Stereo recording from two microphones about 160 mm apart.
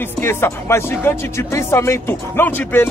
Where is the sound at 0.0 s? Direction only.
15° left (ahead or behind).